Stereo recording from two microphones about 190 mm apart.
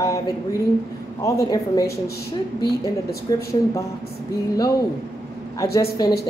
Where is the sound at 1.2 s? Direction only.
15° left (ahead or behind).